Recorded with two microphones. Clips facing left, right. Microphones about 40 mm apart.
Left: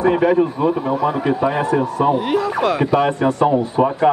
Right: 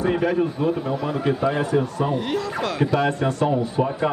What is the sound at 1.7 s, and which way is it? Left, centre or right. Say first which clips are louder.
A man's voice: left 5 dB; left.